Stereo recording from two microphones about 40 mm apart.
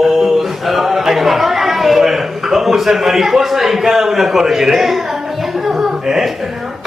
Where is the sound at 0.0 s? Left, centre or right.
Centre.